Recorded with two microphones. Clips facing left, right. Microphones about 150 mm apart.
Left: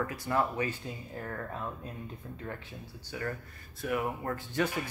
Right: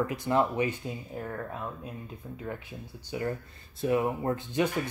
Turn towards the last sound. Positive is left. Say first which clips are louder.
# right 4 dB
turn(degrees=-20)  # may be behind; listen again after turning